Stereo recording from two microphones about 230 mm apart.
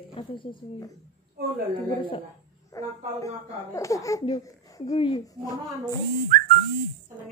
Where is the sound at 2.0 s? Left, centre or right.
Left.